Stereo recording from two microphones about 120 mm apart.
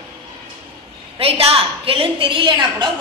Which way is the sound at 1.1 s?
50° right (ahead or behind).